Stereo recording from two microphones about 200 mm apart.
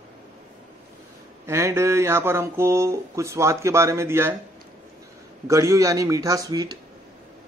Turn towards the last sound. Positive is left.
turn(degrees=-20)  # may be behind; listen again after turning